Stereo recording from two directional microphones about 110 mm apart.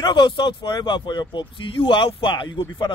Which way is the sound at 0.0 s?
45° left (ahead or behind).